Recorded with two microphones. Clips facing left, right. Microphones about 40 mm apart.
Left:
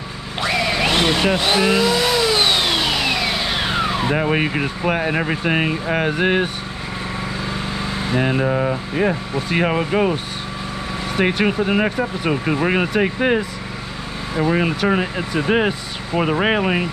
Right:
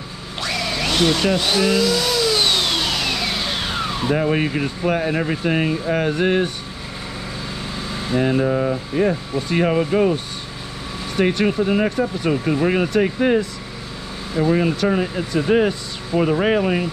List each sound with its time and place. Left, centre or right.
0.4 s blender: centre
8.1 s speech: left
11.1 s speech: left